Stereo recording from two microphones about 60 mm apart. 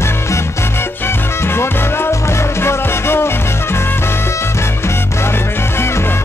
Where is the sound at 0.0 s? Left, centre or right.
Left.